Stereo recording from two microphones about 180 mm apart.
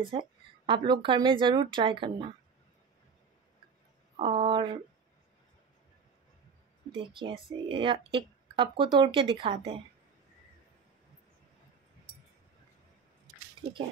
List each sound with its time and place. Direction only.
0.0 s speech: 25° right (ahead or behind)
4.2 s speech: 25° right (ahead or behind)
7.0 s speech: 25° right (ahead or behind)